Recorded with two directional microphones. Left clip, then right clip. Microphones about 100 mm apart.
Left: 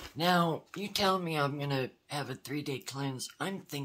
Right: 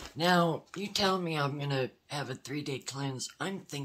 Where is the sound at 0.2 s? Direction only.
40° left (ahead or behind).